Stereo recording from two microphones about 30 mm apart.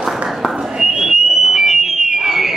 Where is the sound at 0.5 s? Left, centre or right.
Centre.